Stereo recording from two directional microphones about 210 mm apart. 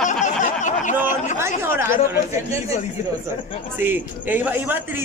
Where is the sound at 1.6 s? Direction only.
10° right (ahead or behind).